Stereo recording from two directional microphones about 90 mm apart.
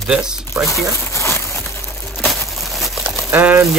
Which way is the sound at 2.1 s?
Centre (ahead or behind).